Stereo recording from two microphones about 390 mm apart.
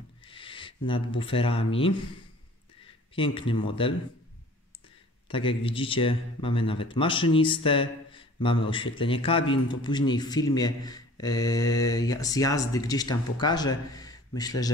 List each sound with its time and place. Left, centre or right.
0.2 s speech: centre
3.2 s a man's voice: centre
5.3 s a man's voice: centre